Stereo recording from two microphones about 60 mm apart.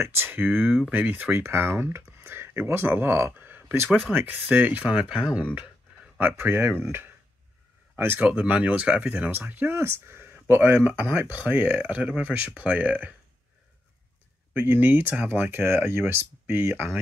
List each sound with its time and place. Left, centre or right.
0.0 s speech: right
1.3 s speech: right
3.3 s a sound: right
4.1 s speech: right
6.1 s speech: right
8.2 s speech: right
9.8 s speech: right
10.5 s speech: right
14.5 s speech: right
16.4 s speech: right